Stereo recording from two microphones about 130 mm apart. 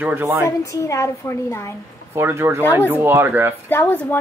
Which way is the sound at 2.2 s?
20° right (ahead or behind).